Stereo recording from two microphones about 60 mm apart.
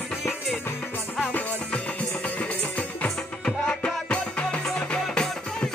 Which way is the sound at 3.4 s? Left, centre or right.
Centre.